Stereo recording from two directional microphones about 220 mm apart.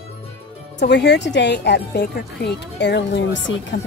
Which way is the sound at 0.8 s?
50° left (ahead or behind).